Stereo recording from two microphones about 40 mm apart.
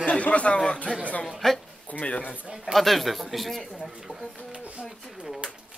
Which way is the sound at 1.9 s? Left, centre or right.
Left.